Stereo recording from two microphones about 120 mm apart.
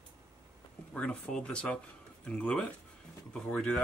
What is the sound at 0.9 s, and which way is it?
Speech, 10° left (ahead or behind).